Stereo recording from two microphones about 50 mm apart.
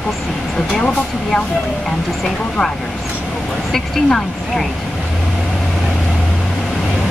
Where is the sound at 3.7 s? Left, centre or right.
Centre.